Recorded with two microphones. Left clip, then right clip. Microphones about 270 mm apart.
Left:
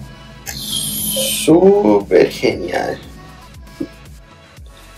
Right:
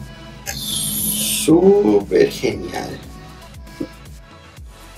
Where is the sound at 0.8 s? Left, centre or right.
Centre.